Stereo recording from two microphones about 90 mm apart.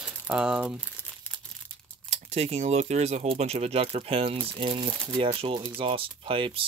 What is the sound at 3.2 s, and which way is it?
Speech, 90° right.